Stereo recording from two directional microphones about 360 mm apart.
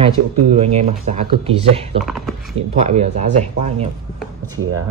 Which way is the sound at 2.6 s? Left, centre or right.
Centre.